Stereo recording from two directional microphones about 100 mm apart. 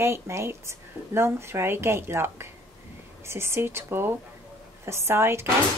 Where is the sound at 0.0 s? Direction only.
25° right (ahead or behind).